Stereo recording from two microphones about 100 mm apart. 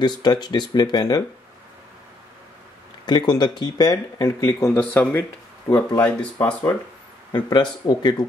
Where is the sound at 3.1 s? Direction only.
45° left (ahead or behind).